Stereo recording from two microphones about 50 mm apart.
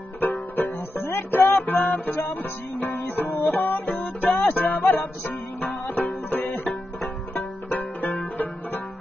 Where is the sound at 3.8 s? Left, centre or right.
Left.